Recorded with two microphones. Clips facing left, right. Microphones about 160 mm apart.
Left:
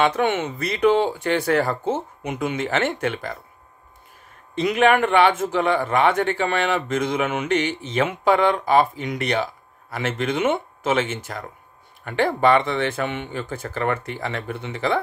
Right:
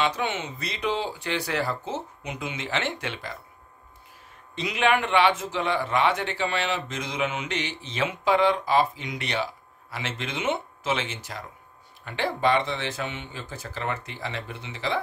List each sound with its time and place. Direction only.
0.0 s a man's voice: 55° left (ahead or behind)
4.6 s a man's voice: 50° left (ahead or behind)